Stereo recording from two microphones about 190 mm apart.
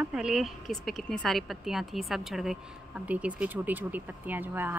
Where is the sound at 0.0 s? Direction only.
5° right (ahead or behind).